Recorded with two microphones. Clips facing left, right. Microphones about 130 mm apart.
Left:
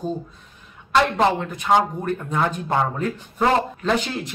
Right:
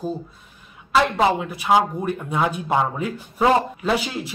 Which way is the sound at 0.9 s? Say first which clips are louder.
Even; centre (ahead or behind).